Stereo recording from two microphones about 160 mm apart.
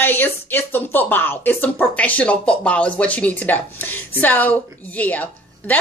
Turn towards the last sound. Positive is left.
turn(degrees=10)  # may be behind; listen again after turning